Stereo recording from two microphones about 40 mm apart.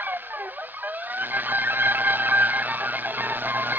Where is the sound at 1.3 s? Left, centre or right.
Right.